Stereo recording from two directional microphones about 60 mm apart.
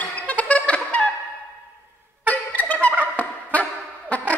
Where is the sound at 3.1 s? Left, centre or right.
Left.